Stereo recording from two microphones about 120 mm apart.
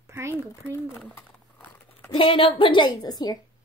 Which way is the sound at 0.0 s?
25° right (ahead or behind).